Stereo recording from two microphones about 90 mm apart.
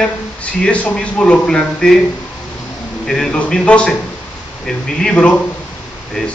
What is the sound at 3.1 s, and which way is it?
Speech, 10° left (ahead or behind).